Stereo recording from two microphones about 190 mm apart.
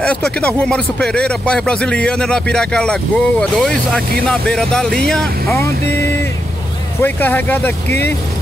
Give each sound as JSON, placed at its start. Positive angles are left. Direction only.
{"t": 0.0, "sound": "speech", "side_deg": 5}